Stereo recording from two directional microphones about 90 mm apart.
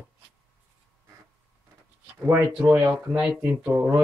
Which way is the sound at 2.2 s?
20° right (ahead or behind).